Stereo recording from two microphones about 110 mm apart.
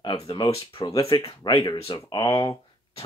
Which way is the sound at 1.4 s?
45° left (ahead or behind).